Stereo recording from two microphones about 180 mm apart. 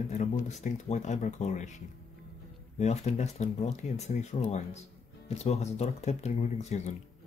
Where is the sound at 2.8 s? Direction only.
35° left (ahead or behind).